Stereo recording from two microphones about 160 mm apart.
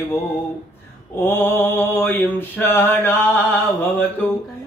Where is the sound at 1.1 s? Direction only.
15° left (ahead or behind).